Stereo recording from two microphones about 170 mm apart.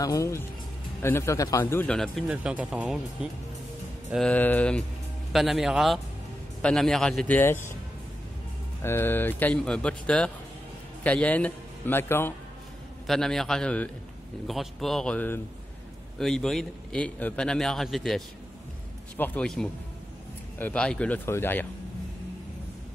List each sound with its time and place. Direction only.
0.0 s a man's voice: 20° left (ahead or behind)
8.8 s speech: 15° left (ahead or behind)
13.0 s a man's voice: 5° left (ahead or behind)